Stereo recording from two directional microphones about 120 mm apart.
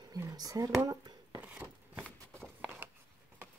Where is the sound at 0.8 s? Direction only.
30° right (ahead or behind).